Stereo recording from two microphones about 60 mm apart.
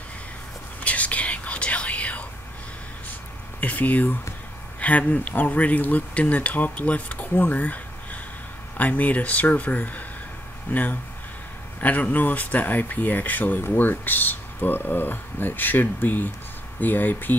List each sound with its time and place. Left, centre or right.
0.8 s whispering: left
3.6 s speech: left